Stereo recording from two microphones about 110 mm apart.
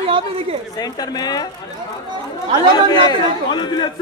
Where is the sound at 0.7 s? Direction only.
35° left (ahead or behind).